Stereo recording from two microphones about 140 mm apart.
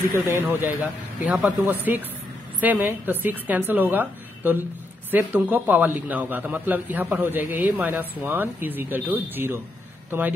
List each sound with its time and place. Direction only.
0.1 s a man's voice: 15° right (ahead or behind)